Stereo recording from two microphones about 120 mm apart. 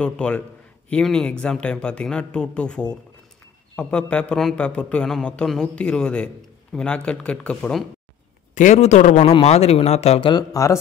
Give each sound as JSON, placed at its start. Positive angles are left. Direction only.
{"t": 0.0, "sound": "a man's voice", "side_deg": 10}
{"t": 8.5, "sound": "a man's voice", "side_deg": 80}
{"t": 9.4, "sound": "speech", "side_deg": 60}
{"t": 10.2, "sound": "speech", "side_deg": 30}